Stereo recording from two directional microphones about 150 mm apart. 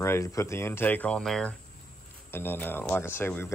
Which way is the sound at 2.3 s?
15° left (ahead or behind).